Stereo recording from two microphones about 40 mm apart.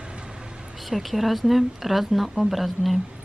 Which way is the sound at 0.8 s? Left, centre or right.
Centre.